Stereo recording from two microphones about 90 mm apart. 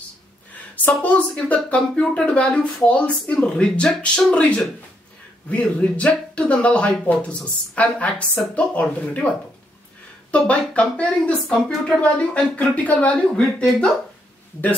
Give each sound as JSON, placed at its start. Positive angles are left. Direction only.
{"t": 0.8, "sound": "speech", "side_deg": 15}
{"t": 10.3, "sound": "speech", "side_deg": 15}